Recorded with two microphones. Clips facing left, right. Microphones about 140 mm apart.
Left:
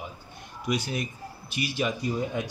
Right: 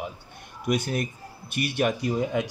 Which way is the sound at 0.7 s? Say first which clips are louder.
Right 3 dB; 50° right (ahead or behind).